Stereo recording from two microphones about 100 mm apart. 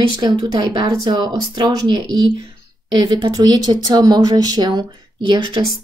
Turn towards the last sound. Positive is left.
turn(degrees=-45)  # may be behind; listen again after turning